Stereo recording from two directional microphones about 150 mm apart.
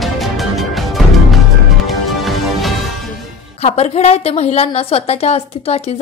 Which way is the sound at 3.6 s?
45° left (ahead or behind).